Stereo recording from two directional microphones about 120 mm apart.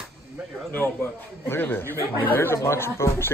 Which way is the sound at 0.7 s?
15° left (ahead or behind).